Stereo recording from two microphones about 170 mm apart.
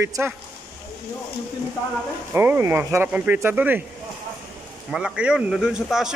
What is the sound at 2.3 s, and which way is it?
Speech, 10° right (ahead or behind).